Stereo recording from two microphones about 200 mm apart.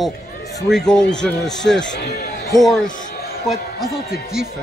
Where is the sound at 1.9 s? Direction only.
50° left (ahead or behind).